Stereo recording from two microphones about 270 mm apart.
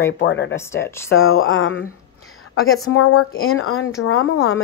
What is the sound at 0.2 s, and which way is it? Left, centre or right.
Speech, left.